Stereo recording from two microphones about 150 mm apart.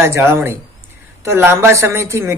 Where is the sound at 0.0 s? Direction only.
15° right (ahead or behind).